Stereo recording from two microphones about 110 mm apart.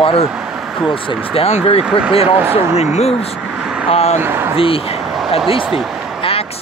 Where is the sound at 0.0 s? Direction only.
55° left (ahead or behind).